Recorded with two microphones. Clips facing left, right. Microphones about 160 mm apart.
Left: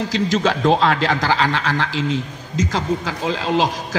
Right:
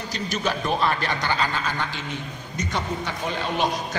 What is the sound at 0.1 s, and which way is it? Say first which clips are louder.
A man's voice: left 6 dB; 90° left.